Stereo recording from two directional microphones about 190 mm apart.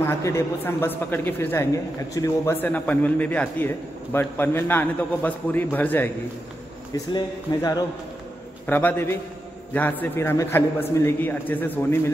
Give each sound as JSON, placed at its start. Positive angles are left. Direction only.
{"t": 0.2, "sound": "a woman's voice", "side_deg": 15}
{"t": 7.1, "sound": "speech", "side_deg": 20}
{"t": 8.6, "sound": "a woman's voice", "side_deg": 10}